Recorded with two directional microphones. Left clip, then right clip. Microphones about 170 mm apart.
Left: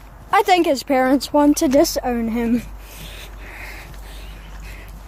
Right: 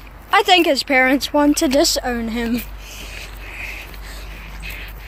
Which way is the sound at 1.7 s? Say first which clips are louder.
Even; 50° left (ahead or behind).